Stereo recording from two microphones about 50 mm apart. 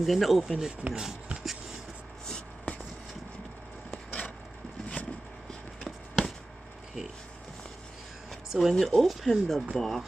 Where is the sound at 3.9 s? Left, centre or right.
Centre.